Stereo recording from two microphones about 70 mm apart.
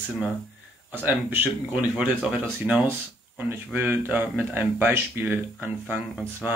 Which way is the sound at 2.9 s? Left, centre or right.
Right.